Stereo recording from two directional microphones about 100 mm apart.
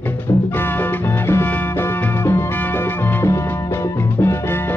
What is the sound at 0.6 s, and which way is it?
Music, 20° left (ahead or behind).